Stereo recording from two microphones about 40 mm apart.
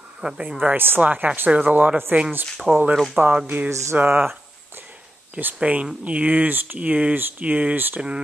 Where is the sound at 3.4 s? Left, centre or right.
Right.